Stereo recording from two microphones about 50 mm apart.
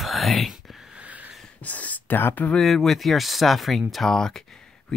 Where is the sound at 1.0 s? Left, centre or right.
Right.